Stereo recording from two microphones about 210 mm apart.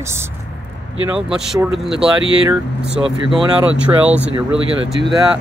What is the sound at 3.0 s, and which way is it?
Speech, 25° right (ahead or behind).